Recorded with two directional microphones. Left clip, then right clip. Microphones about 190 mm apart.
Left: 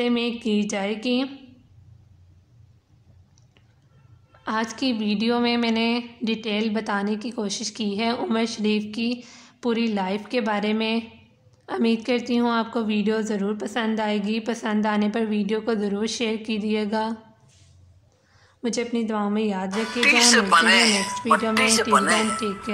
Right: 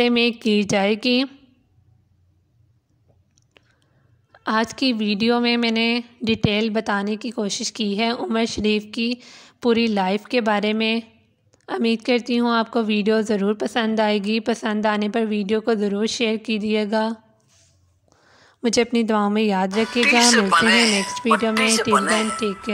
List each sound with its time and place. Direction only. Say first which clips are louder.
0.0 s a woman's voice: right 6 dB; 40° right (ahead or behind)
4.3 s a woman's voice: right 5 dB; 40° right (ahead or behind)
18.3 s speech: right 7 dB; 40° right (ahead or behind)
19.7 s speech: left 1 dB; centre (ahead or behind)